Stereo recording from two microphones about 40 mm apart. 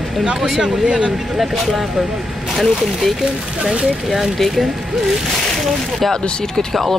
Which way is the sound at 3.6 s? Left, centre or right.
Right.